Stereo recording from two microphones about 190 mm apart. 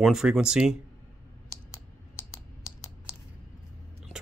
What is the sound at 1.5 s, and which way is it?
Typing, 15° left (ahead or behind).